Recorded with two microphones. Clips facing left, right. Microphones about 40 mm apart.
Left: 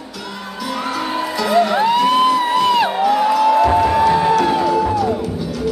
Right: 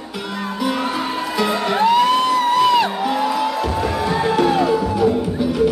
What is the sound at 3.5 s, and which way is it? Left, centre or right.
Music, left.